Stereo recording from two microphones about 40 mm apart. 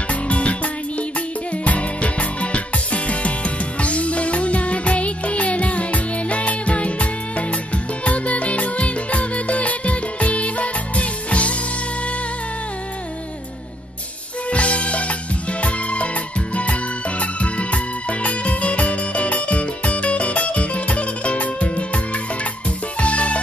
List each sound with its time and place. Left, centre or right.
0.1 s music: left
1.6 s music: left
14.5 s music: left
17.2 s music: left